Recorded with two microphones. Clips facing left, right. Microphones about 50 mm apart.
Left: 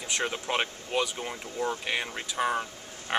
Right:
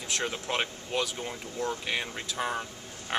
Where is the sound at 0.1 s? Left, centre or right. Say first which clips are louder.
Left 2 dB; centre.